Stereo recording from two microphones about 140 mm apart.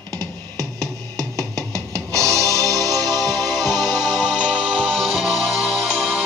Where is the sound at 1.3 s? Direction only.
25° right (ahead or behind).